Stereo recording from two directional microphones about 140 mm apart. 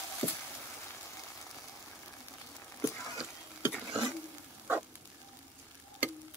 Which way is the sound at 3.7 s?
5° right (ahead or behind).